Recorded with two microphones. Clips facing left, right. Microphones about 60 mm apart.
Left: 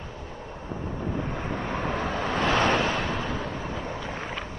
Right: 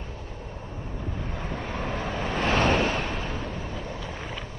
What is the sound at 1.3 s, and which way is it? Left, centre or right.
Vehicle, centre.